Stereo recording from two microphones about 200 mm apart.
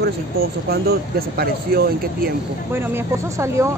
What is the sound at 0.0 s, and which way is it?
Speech, 50° right (ahead or behind).